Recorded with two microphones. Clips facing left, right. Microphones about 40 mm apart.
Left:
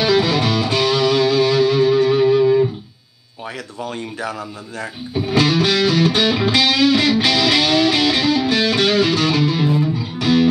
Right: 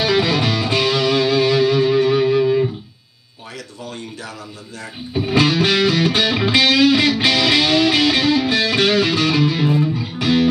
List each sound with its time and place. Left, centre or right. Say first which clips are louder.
0.0 s music: left 1 dB; centre
3.8 s speech: left 7 dB; centre
5.2 s music: even; centre